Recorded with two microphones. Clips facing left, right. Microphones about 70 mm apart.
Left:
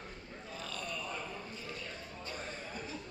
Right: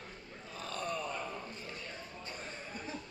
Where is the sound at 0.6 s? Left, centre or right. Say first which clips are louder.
Right 5 dB; right.